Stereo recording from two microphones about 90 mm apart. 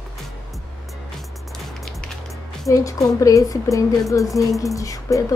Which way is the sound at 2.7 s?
35° left (ahead or behind).